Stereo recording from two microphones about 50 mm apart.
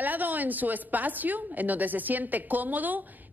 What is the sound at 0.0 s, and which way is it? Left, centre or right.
A woman's voice, right.